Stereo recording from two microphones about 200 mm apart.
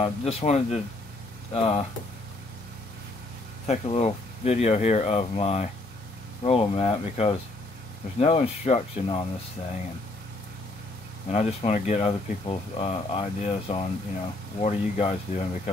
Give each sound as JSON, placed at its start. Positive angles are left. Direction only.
{"t": 0.0, "sound": "speech", "side_deg": 30}
{"t": 3.6, "sound": "speech", "side_deg": 30}
{"t": 11.2, "sound": "speech", "side_deg": 30}